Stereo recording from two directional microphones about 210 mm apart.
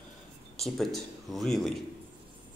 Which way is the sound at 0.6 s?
Centre (ahead or behind).